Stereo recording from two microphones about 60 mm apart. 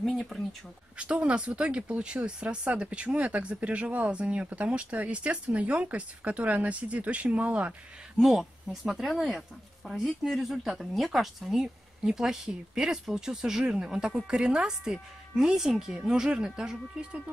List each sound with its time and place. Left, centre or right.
0.0 s speech: centre
0.9 s speech: centre
8.2 s speech: centre